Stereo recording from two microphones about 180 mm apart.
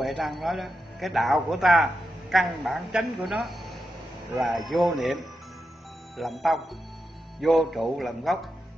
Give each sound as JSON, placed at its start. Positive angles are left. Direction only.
{"t": 0.0, "sound": "a man's voice", "side_deg": 0}
{"t": 6.1, "sound": "a man's voice", "side_deg": 0}